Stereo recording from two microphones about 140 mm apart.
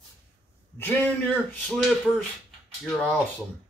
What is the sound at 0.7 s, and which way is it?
Speech, 15° left (ahead or behind).